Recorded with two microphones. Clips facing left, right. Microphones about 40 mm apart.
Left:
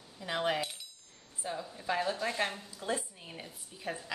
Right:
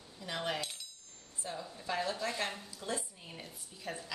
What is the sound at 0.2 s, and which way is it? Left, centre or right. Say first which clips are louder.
A woman's voice: left 5 dB; centre.